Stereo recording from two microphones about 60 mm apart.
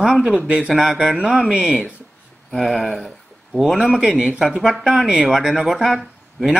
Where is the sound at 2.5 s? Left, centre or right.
Centre.